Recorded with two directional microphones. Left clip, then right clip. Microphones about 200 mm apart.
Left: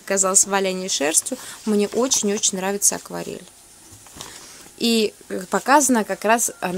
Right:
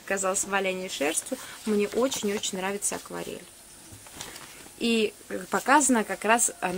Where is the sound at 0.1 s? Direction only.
45° left (ahead or behind).